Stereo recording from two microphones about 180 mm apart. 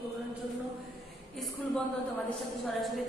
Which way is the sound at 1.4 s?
Centre (ahead or behind).